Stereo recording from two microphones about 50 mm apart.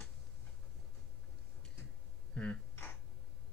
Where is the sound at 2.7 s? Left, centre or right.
Left.